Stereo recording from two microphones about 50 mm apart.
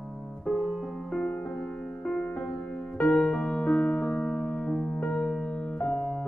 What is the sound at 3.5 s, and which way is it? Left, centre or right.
Music, centre.